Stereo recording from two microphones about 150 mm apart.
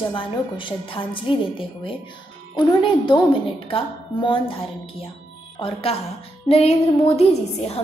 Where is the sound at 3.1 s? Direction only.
35° left (ahead or behind).